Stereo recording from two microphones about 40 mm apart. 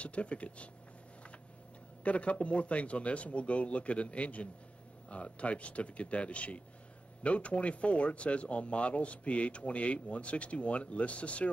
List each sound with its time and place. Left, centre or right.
0.0 s speech: left
2.0 s speech: left